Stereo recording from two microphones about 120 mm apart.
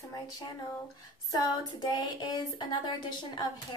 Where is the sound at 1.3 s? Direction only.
35° left (ahead or behind).